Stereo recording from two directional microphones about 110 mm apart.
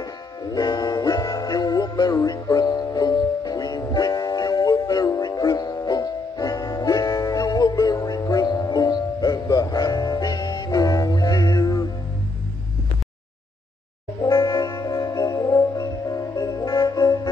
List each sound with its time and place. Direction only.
0.0 s music: 35° left (ahead or behind)
14.2 s music: 35° left (ahead or behind)